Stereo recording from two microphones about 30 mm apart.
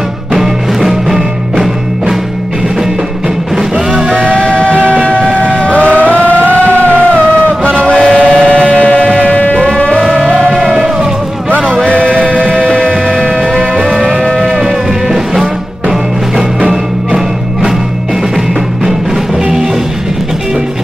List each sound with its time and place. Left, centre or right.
0.3 s music: centre
4.1 s music: left
5.9 s a sound: right
6.3 s music: left
6.9 s music: right
7.9 s train: left
8.5 s a sound: left
8.7 s music: left
9.3 s music: left
9.6 s music: left
12.4 s music: left